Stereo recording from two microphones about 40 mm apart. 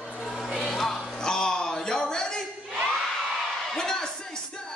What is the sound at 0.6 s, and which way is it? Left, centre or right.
Music, centre.